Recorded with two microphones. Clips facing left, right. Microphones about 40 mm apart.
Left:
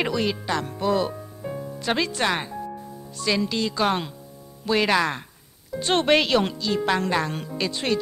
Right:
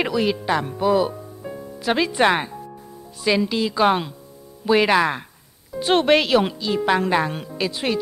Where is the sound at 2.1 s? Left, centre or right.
Centre.